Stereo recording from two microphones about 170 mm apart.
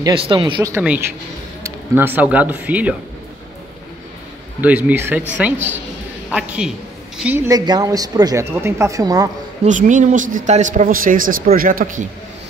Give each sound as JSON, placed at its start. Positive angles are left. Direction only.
{"t": 0.0, "sound": "speech", "side_deg": -30}
{"t": 0.7, "sound": "a man's voice", "side_deg": -10}
{"t": 4.6, "sound": "a man's voice", "side_deg": -10}
{"t": 9.7, "sound": "speech", "side_deg": -45}